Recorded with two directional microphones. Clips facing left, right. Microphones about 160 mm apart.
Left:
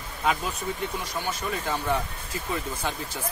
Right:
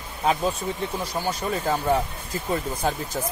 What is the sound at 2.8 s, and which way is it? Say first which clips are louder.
Speech: right 7 dB; 40° right (ahead or behind).